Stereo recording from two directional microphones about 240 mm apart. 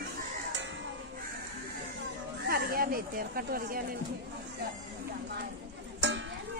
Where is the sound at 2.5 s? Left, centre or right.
Right.